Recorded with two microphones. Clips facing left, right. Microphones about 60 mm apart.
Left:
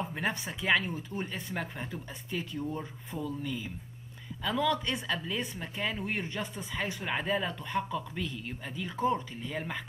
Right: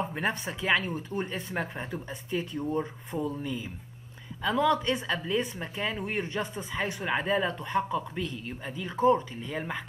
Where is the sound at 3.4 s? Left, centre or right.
Centre.